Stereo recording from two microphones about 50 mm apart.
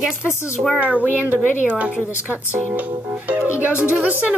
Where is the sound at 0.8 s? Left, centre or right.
Right.